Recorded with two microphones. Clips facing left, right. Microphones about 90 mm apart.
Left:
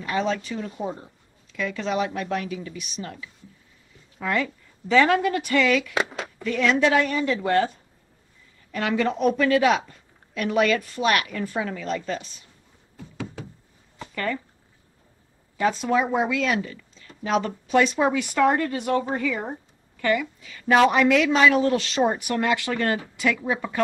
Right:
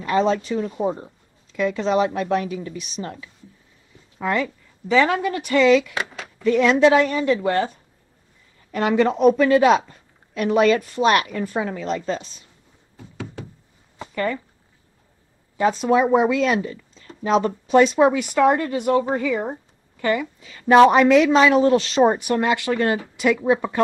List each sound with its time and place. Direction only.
0.1 s a woman's voice: 35° right (ahead or behind)
0.5 s a woman's voice: 25° right (ahead or behind)
4.8 s speech: 5° right (ahead or behind)
5.3 s speech: 20° right (ahead or behind)
8.7 s speech: 30° right (ahead or behind)
13.9 s a sound: 20° right (ahead or behind)
15.5 s speech: 25° right (ahead or behind)
16.0 s a woman's voice: 35° right (ahead or behind)